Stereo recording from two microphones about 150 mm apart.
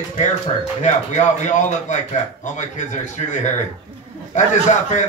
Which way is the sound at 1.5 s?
55° left (ahead or behind).